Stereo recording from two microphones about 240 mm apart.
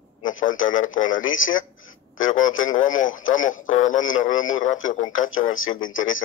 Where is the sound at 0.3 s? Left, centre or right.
Left.